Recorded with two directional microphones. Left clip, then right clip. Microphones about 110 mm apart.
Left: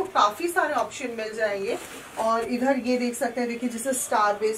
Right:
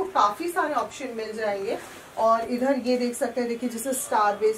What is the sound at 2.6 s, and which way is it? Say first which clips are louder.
Speech: even; 15° right (ahead or behind).